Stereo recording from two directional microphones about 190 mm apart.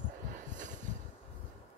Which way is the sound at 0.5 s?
40° right (ahead or behind).